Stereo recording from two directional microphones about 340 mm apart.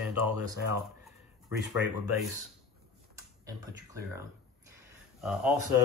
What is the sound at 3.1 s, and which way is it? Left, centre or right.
Speech, centre.